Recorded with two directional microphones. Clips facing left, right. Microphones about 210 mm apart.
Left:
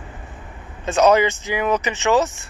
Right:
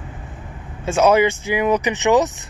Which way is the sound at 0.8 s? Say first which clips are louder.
Right 1 dB; 10° right (ahead or behind).